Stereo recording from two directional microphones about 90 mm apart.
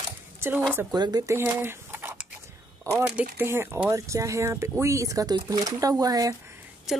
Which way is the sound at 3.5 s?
30° right (ahead or behind).